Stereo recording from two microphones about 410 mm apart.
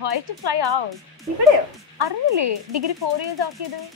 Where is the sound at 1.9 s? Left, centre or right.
Right.